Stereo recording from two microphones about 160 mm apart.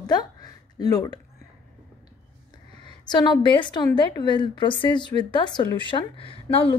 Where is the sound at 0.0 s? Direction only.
25° left (ahead or behind).